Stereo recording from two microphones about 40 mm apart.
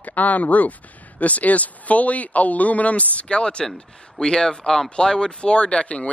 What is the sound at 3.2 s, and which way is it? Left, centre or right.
Speech, left.